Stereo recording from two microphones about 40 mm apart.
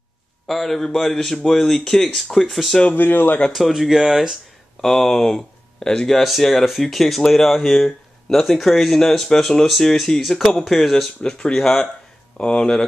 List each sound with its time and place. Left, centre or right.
0.5 s speech: centre
2.9 s speech: left
3.5 s speech: centre
4.8 s speech: centre
6.1 s speech: centre
11.2 s speech: left